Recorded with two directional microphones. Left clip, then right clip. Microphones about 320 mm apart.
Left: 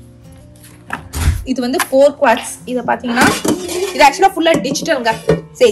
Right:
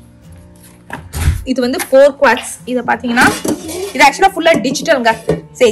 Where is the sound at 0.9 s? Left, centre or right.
Centre.